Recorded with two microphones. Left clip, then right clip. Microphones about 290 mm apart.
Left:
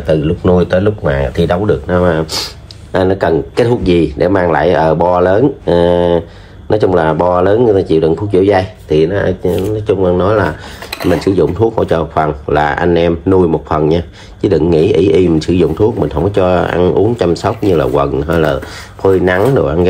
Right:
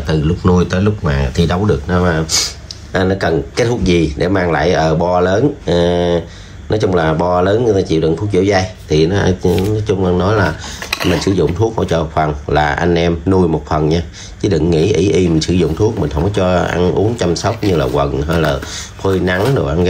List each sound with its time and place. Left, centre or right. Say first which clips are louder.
0.0 s speech: left 5 dB; centre